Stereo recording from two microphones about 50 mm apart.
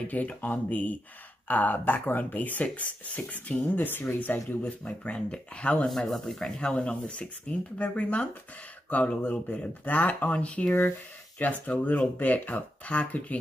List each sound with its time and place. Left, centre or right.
0.0 s speech: left
5.9 s speech: centre
6.4 s speech: centre